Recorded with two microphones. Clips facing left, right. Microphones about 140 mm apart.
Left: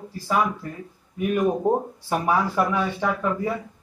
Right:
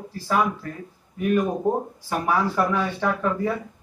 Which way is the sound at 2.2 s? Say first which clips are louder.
Even; 10° left (ahead or behind).